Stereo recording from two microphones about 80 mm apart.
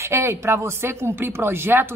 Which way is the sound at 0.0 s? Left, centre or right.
Right.